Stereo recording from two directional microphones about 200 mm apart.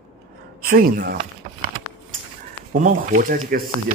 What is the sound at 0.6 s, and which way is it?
Speech, 45° right (ahead or behind).